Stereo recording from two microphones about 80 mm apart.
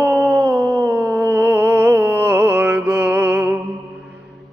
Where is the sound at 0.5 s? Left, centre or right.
Right.